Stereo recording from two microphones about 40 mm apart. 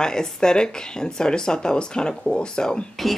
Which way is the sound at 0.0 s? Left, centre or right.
Centre.